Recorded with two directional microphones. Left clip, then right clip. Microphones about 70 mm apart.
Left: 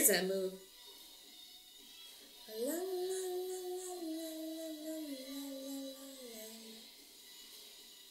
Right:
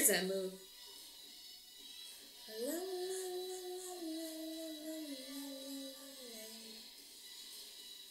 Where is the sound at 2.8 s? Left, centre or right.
Right.